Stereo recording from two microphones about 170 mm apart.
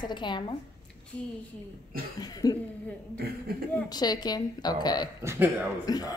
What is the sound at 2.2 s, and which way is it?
Speech, 20° left (ahead or behind).